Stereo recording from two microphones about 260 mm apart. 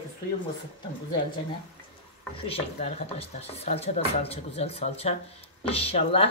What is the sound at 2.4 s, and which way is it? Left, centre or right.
Speech, left.